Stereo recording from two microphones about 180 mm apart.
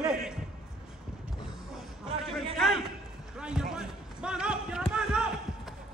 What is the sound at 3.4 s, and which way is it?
Speech, 5° right (ahead or behind).